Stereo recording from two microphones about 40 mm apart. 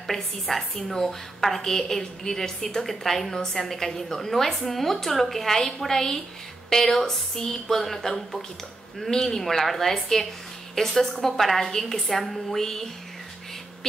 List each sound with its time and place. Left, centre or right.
0.0 s a woman's voice: centre